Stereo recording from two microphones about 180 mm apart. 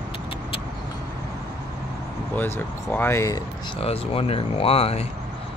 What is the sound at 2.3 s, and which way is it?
Speech, 10° left (ahead or behind).